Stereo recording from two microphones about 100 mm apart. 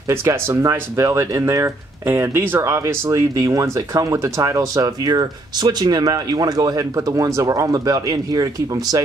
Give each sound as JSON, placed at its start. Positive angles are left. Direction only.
{"t": 0.1, "sound": "speech", "side_deg": -25}